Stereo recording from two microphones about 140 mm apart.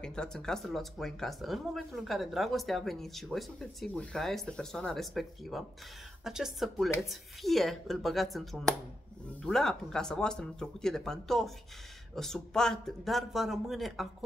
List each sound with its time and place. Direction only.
0.0 s speech: 5° left (ahead or behind)